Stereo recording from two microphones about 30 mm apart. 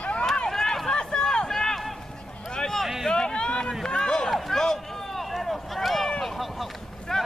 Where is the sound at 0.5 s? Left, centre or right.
Centre.